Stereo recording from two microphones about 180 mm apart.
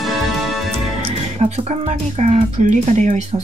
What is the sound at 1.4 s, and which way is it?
Speech, 35° right (ahead or behind).